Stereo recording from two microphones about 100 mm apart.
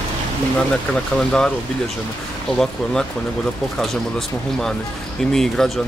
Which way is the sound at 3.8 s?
5° left (ahead or behind).